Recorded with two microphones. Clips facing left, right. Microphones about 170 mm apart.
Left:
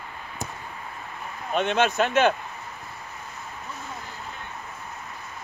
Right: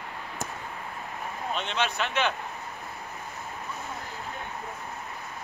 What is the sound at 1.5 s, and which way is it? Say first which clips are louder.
Speech: left 9 dB; 50° left (ahead or behind).